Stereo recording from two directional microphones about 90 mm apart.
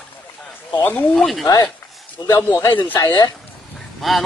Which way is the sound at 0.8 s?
20° left (ahead or behind).